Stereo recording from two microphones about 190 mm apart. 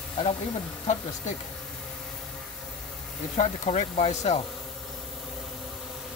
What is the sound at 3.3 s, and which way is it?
Speech, 35° left (ahead or behind).